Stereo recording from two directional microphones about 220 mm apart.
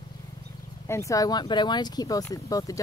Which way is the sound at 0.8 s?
15° left (ahead or behind).